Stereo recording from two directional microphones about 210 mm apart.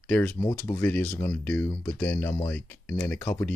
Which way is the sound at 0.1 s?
15° left (ahead or behind).